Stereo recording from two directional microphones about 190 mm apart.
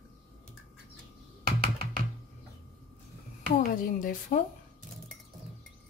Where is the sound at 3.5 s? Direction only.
45° left (ahead or behind).